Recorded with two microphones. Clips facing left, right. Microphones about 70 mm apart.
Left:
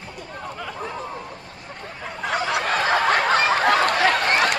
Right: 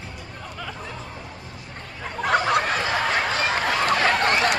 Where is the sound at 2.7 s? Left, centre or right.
Left.